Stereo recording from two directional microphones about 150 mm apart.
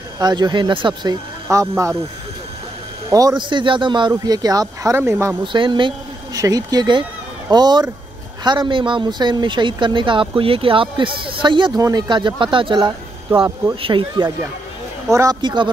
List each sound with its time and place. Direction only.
0.2 s speech: 30° right (ahead or behind)
1.5 s speech: 20° right (ahead or behind)
3.1 s speech: 25° right (ahead or behind)
5.4 s speech: 30° right (ahead or behind)
15.0 s speech: 20° right (ahead or behind)
15.4 s speech: 30° right (ahead or behind)